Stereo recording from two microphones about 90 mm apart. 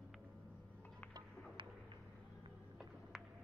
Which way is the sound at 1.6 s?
65° right (ahead or behind).